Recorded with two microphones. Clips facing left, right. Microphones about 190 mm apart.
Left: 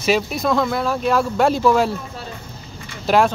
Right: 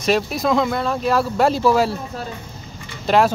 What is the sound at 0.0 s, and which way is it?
Speech, centre (ahead or behind).